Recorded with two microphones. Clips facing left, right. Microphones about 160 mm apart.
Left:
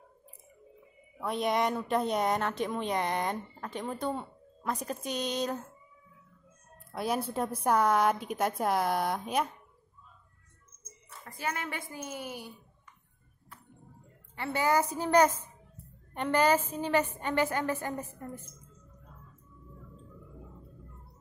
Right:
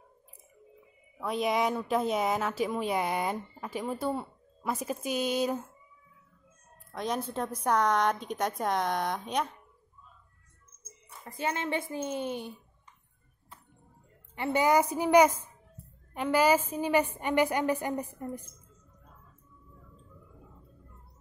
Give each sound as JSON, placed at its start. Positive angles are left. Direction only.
{"t": 1.2, "sound": "a woman's voice", "side_deg": 0}
{"t": 6.9, "sound": "a woman's voice", "side_deg": 10}
{"t": 11.2, "sound": "a woman's voice", "side_deg": -25}
{"t": 14.3, "sound": "a woman's voice", "side_deg": -20}